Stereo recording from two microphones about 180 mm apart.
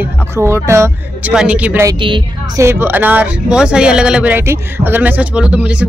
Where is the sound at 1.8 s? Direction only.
25° right (ahead or behind).